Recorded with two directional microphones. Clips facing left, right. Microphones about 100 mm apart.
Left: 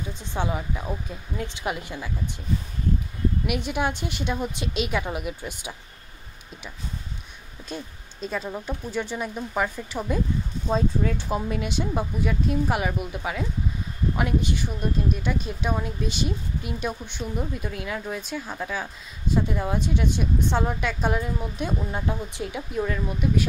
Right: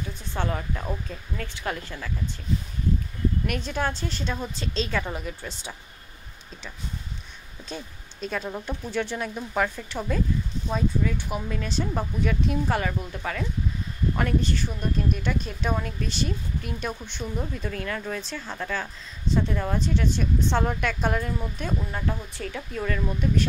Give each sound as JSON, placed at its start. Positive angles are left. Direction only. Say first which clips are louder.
{"t": 0.1, "sound": "a woman's voice", "louder": "left 2 dB", "side_deg": 20}
{"t": 3.4, "sound": "a woman's voice", "louder": "left 2 dB", "side_deg": 15}
{"t": 7.6, "sound": "a woman's voice", "louder": "left 2 dB", "side_deg": 5}
{"t": 10.7, "sound": "a woman's voice", "louder": "left 2 dB", "side_deg": 25}
{"t": 14.8, "sound": "a woman's voice", "louder": "left 1 dB", "side_deg": 0}